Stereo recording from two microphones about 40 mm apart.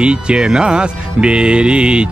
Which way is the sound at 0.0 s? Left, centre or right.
Right.